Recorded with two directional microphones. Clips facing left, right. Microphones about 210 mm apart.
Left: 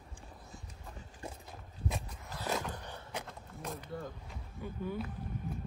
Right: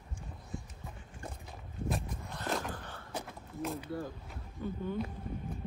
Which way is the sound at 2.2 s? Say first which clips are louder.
Left 1 dB; 5° left (ahead or behind).